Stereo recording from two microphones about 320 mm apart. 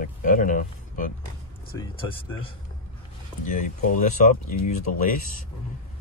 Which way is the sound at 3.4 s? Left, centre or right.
Left.